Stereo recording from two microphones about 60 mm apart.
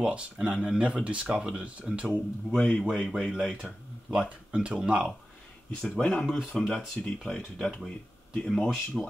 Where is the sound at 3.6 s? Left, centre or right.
Centre.